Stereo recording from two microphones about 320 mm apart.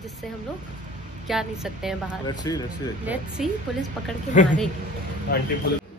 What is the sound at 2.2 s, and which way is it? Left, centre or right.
Speech, centre.